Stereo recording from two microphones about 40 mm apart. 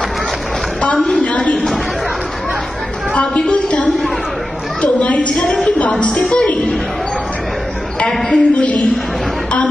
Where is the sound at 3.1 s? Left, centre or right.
Left.